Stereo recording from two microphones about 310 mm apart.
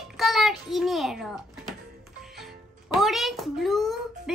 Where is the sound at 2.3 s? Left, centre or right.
Centre.